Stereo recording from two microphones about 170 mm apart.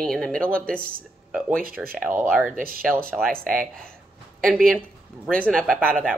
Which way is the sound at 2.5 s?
55° right (ahead or behind).